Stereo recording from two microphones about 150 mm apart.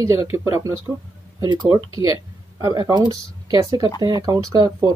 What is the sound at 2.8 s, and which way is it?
Speech, 25° right (ahead or behind).